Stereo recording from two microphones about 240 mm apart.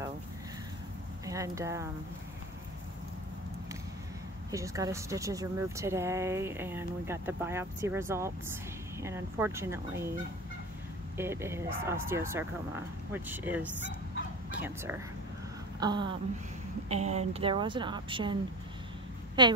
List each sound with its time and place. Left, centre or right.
1.2 s speech: centre
4.5 s speech: centre
11.1 s speech: centre
15.8 s speech: centre